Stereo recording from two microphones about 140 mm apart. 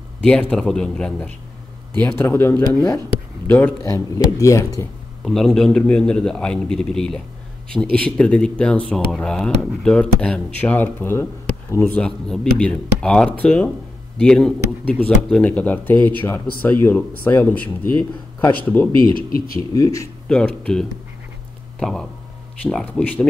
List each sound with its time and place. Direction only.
0.2 s a man's voice: 10° left (ahead or behind)
2.0 s speech: 15° left (ahead or behind)
5.2 s a man's voice: centre (ahead or behind); by 12.0 s 20° left (ahead or behind)
12.0 s speech: 5° left (ahead or behind); by 20.1 s 25° left (ahead or behind)
20.2 s a man's voice: 5° left (ahead or behind)